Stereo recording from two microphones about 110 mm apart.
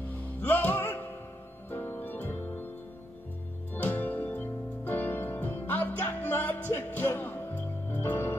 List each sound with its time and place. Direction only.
0.4 s music: 15° left (ahead or behind)
3.7 s music: 15° left (ahead or behind)